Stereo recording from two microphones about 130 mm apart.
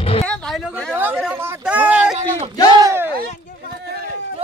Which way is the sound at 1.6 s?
10° right (ahead or behind).